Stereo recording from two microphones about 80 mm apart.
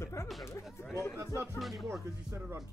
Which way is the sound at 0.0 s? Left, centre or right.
Left.